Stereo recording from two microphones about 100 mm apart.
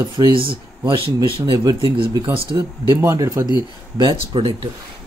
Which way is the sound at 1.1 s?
40° right (ahead or behind).